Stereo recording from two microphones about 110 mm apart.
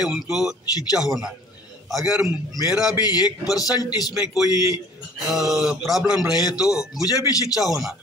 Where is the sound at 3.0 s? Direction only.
35° left (ahead or behind).